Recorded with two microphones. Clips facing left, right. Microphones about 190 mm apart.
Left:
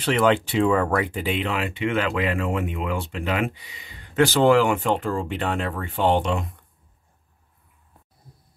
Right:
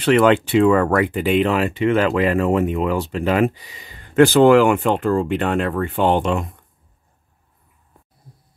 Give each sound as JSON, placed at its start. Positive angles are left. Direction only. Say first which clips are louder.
{"t": 0.0, "sound": "speech", "louder": "right 6 dB", "side_deg": -65}